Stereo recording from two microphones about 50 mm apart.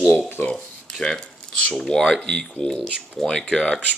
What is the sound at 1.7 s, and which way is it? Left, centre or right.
Speech, centre.